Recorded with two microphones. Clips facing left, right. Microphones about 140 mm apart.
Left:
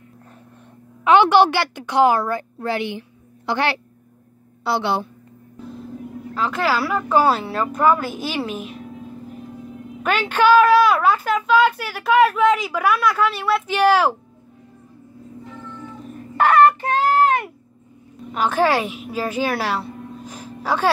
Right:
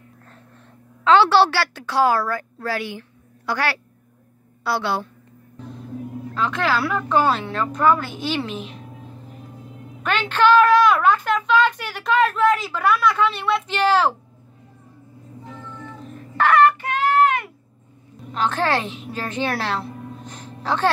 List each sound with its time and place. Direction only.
1.0 s a woman's voice: 15° left (ahead or behind)
6.3 s a woman's voice: 5° left (ahead or behind)
10.0 s a woman's voice: 10° left (ahead or behind)
16.4 s child singing: 35° left (ahead or behind)
18.3 s a woman's voice: 10° left (ahead or behind)